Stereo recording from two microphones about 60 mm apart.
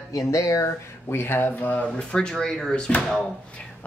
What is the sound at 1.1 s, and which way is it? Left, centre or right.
Speech, left.